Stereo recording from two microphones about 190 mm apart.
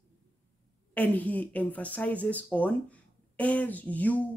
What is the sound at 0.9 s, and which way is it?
Speech, 10° left (ahead or behind).